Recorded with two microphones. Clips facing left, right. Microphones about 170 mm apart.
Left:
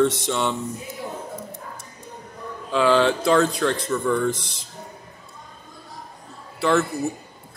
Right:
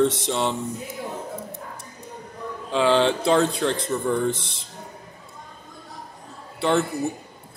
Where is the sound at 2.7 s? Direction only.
30° right (ahead or behind).